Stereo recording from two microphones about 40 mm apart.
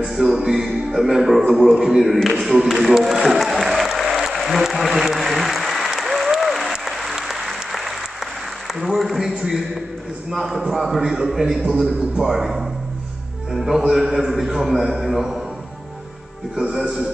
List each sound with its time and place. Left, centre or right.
0.1 s a man's voice: centre
3.6 s applause: centre
8.7 s a man's voice: centre